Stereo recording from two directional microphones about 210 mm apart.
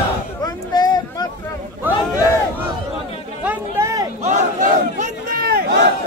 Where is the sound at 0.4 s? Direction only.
20° left (ahead or behind).